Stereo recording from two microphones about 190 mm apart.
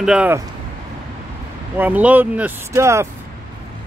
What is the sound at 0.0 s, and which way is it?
Speech, 5° right (ahead or behind).